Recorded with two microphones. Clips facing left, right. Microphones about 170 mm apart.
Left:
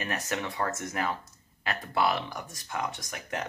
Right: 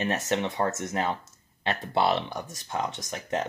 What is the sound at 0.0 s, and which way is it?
Speech, 25° right (ahead or behind).